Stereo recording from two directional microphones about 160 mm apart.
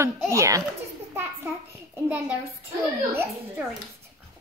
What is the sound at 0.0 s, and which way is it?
Speech, 20° right (ahead or behind).